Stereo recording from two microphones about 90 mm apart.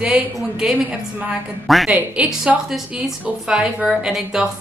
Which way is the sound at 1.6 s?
Centre (ahead or behind).